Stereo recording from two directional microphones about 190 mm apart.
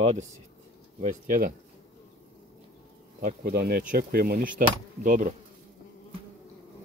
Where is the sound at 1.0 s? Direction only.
45° right (ahead or behind).